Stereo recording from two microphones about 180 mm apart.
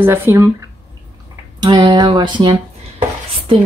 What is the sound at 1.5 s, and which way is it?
A woman's voice, 25° right (ahead or behind).